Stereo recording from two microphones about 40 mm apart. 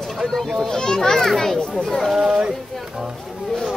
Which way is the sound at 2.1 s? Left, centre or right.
Centre.